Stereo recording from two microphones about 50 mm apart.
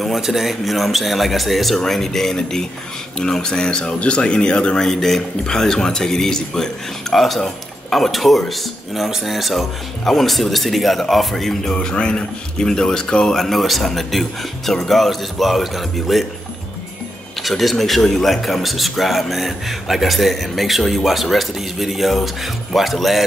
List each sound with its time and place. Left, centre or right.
0.0 s speech: centre
11.7 s speech: centre
13.4 s speech: centre
17.4 s speech: centre